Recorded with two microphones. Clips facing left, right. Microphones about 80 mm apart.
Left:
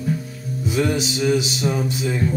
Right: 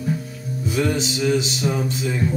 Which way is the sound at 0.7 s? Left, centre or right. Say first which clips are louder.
Left 1 dB; centre.